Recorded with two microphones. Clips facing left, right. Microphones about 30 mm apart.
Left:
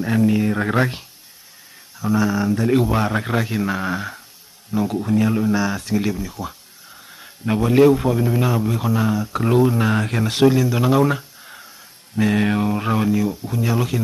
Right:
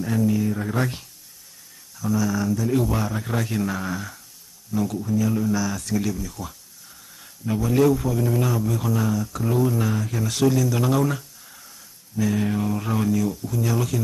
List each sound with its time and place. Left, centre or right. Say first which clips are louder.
0.0 s speech: left 4 dB; left
0.7 s speech: left 5 dB; left
2.5 s speech: left 5 dB; left
3.3 s a man's voice: left 4 dB; left
4.9 s speech: left 7 dB; left
5.3 s speech: left 4 dB; left
7.4 s speech: left 5 dB; left
8.2 s speech: left 3 dB; left
9.9 s speech: left 6 dB; left
10.2 s speech: left 4 dB; left
12.2 s speech: left 5 dB; left
12.6 s speech: left 4 dB; left